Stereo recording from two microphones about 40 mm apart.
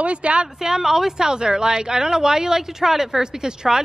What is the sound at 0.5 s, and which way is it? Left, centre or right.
Speech, centre.